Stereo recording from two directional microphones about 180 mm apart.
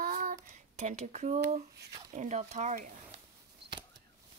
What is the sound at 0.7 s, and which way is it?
Speech, 40° right (ahead or behind).